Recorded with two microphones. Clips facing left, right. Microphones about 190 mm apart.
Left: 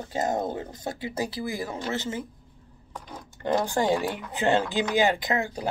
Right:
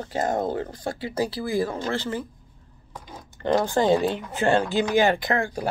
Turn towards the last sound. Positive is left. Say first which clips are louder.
# right 2 dB
turn(degrees=20)  # may be behind; listen again after turning